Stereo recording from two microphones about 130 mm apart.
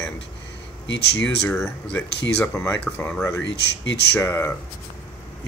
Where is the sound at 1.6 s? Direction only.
15° left (ahead or behind).